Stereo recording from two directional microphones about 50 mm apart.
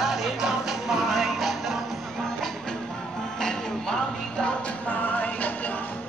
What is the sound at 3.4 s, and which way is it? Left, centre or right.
Music, centre.